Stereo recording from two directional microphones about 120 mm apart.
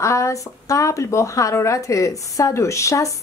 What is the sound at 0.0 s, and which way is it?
Speech, 25° left (ahead or behind).